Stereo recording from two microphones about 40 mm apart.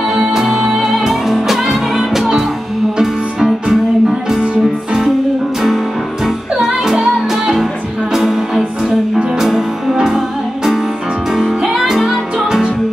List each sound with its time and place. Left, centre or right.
0.1 s music: centre
6.2 s music: centre